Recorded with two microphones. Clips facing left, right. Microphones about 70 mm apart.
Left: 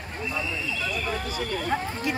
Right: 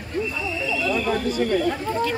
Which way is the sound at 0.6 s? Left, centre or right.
Right.